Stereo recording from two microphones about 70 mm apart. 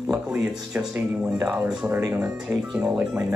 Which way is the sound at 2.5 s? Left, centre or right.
Right.